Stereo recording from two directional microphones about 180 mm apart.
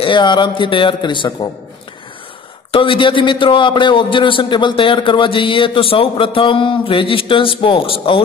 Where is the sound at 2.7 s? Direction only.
30° left (ahead or behind).